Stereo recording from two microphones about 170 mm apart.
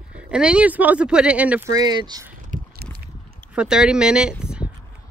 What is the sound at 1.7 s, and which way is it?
Speech, 25° right (ahead or behind).